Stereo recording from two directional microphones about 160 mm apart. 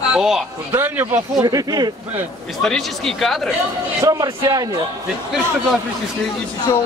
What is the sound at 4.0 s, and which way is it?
Speech, 20° right (ahead or behind).